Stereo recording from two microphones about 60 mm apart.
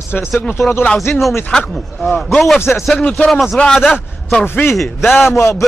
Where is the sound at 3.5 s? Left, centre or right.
Centre.